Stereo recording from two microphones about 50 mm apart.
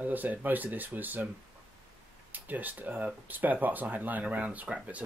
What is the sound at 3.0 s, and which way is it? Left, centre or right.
Speech, right.